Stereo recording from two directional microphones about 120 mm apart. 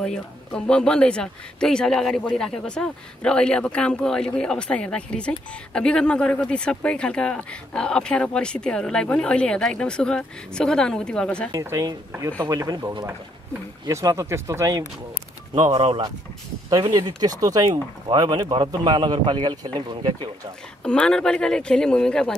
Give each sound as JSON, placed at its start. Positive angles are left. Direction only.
{"t": 0.0, "sound": "speech", "side_deg": 5}
{"t": 11.5, "sound": "speech", "side_deg": -30}
{"t": 15.7, "sound": "speech", "side_deg": -50}
{"t": 16.6, "sound": "speech", "side_deg": -30}
{"t": 20.8, "sound": "speech", "side_deg": 10}